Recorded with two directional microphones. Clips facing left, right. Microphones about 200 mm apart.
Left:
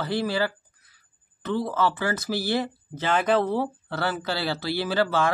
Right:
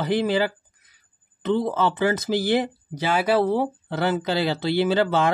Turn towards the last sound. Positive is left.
turn(degrees=-20)  # may be behind; listen again after turning